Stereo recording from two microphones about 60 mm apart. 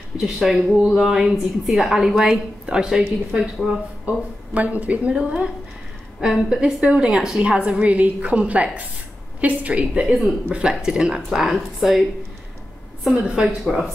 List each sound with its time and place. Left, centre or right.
0.2 s a woman's voice: centre
0.6 s speech: centre
0.9 s a woman's voice: centre
3.0 s speech: centre
4.6 s a woman's voice: right; by 12.0 s centre
13.1 s a woman's voice: centre